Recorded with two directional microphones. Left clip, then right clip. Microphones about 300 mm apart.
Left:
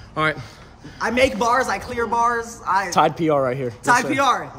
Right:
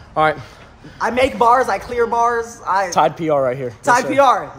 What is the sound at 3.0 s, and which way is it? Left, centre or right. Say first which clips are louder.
Speech: right 1 dB; centre.